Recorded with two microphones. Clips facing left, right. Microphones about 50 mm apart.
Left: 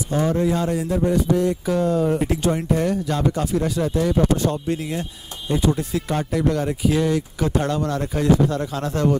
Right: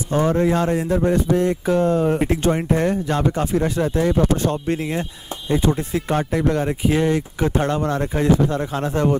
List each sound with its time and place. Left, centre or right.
0.1 s speech: right